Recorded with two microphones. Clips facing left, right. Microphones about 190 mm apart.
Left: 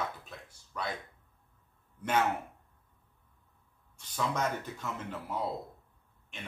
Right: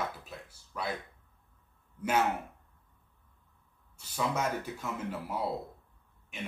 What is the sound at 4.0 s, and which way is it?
Speech, 5° right (ahead or behind).